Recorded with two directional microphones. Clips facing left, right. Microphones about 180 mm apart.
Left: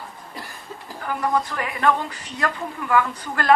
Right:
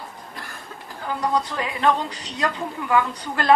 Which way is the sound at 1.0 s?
20° right (ahead or behind).